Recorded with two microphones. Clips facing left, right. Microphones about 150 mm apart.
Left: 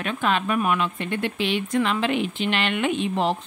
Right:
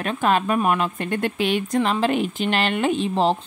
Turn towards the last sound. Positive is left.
turn(degrees=-30)  # may be behind; listen again after turning